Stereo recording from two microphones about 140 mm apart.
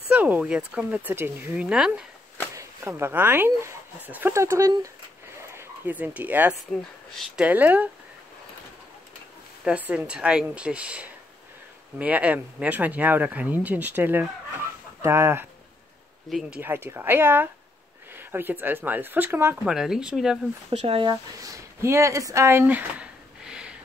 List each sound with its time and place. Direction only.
0.1 s speech: 10° right (ahead or behind)
2.5 s speech: 20° right (ahead or behind)
7.1 s speech: centre (ahead or behind)
7.4 s speech: 10° right (ahead or behind)
9.7 s speech: 10° right (ahead or behind)
16.3 s speech: 5° right (ahead or behind)
20.7 s speech: 45° right (ahead or behind)
21.0 s speech: 25° right (ahead or behind); by 23.8 s 5° right (ahead or behind)